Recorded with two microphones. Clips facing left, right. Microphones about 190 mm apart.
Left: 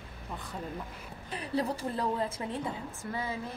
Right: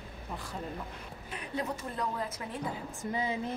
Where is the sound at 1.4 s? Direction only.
30° left (ahead or behind).